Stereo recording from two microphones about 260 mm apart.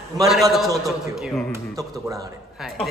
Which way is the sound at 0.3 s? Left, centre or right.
Centre.